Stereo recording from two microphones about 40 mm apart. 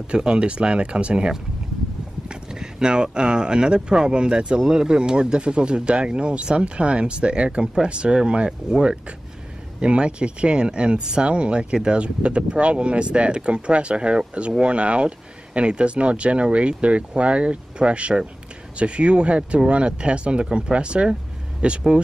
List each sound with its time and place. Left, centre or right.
0.1 s speech: right